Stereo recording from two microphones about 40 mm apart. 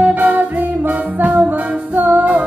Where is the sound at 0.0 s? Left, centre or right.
Right.